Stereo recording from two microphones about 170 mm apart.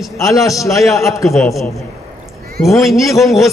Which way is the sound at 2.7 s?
20° left (ahead or behind).